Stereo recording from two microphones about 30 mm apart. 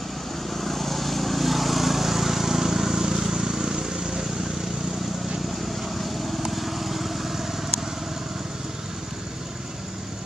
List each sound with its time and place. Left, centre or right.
0.6 s vehicle: centre
6.5 s vehicle: centre